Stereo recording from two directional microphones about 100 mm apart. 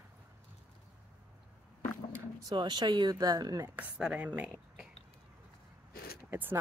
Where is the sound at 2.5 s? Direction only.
50° right (ahead or behind).